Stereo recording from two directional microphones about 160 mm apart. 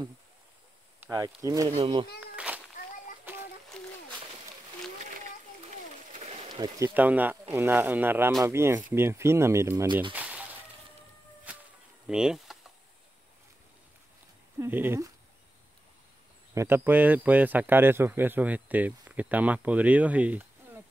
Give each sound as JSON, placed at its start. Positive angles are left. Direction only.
{"t": 1.1, "sound": "speech", "side_deg": -20}
{"t": 1.7, "sound": "speech", "side_deg": -35}
{"t": 2.3, "sound": "a sound", "side_deg": -10}
{"t": 3.8, "sound": "splash", "side_deg": 5}
{"t": 6.2, "sound": "a sound", "side_deg": -40}
{"t": 6.5, "sound": "speech", "side_deg": -25}
{"t": 6.9, "sound": "speech", "side_deg": -10}
{"t": 10.1, "sound": "a sound", "side_deg": -10}
{"t": 12.1, "sound": "speech", "side_deg": -5}
{"t": 14.6, "sound": "speech", "side_deg": -15}
{"t": 16.5, "sound": "speech", "side_deg": -15}